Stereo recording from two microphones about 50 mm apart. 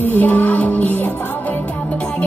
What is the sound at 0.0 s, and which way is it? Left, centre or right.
Music, left.